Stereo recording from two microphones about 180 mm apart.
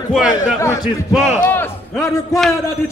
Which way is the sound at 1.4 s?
10° left (ahead or behind).